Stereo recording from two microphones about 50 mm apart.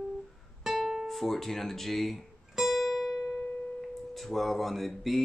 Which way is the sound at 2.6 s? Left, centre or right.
Centre.